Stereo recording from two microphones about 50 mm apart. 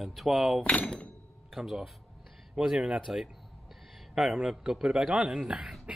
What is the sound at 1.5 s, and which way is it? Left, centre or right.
Speech, centre.